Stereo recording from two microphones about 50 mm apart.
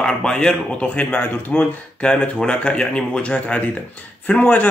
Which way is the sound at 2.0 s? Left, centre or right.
Left.